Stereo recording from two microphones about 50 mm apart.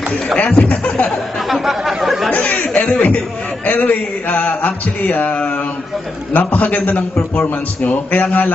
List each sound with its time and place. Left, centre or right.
0.4 s speech: left
1.5 s speech: centre
2.3 s a sound: left